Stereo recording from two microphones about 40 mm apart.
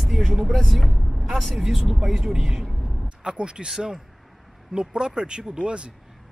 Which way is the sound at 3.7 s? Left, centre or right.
Centre.